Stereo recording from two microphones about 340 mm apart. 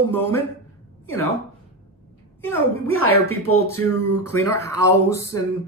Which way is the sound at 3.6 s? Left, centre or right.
Centre.